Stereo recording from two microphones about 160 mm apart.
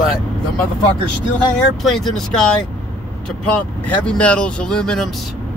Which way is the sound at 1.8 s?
Centre (ahead or behind).